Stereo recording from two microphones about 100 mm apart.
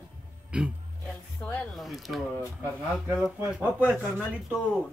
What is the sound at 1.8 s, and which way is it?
Speech, centre (ahead or behind).